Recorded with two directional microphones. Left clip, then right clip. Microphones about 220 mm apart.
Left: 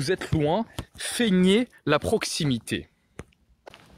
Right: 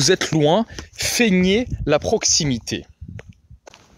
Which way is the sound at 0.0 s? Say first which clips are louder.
Right 9 dB; 45° right (ahead or behind).